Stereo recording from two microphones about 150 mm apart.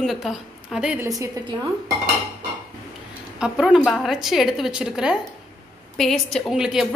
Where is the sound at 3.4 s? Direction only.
5° right (ahead or behind).